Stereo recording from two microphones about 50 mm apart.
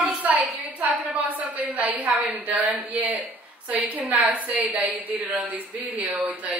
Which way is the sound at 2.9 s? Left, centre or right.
Right.